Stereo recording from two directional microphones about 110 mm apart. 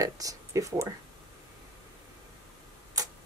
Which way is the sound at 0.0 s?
30° right (ahead or behind).